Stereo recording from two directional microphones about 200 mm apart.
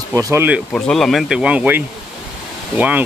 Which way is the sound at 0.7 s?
5° left (ahead or behind).